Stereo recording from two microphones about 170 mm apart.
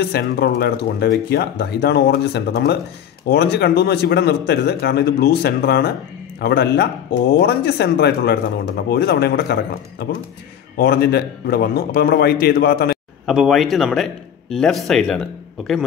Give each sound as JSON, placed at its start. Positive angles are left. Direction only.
{"t": 0.0, "sound": "a man's voice", "side_deg": 70}
{"t": 13.2, "sound": "a man's voice", "side_deg": 0}